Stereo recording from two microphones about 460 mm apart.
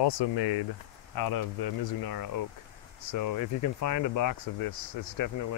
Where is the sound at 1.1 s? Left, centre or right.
Left.